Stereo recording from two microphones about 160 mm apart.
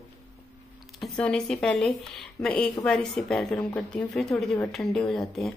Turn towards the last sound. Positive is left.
turn(degrees=0)  # may be behind; listen again after turning